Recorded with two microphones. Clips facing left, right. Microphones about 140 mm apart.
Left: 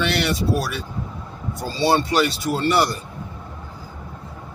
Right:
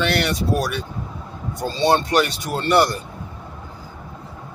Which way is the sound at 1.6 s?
5° left (ahead or behind).